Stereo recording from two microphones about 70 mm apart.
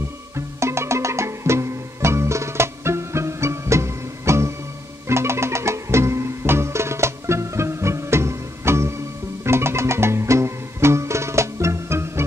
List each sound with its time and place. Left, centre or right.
0.6 s music: right